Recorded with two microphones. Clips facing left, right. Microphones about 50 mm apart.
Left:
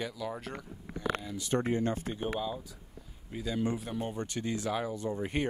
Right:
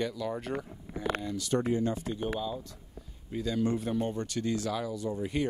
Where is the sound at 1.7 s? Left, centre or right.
Left.